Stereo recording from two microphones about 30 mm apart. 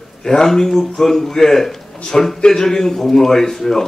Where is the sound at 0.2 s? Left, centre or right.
Centre.